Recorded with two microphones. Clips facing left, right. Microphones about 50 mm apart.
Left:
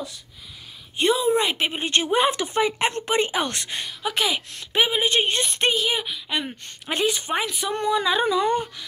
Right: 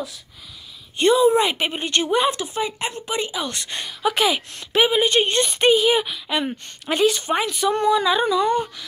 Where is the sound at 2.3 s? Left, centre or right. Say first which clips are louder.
Left 3 dB; left.